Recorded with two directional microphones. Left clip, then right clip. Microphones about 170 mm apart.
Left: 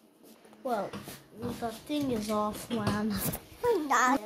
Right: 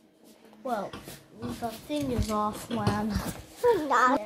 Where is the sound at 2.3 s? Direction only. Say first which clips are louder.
Right 2 dB; 20° right (ahead or behind).